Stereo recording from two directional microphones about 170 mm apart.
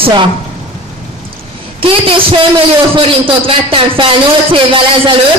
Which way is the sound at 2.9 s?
30° right (ahead or behind).